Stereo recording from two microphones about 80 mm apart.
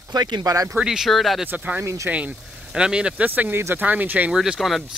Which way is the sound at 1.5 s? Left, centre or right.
Right.